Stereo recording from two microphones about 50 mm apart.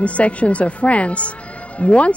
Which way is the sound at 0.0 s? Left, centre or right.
Left.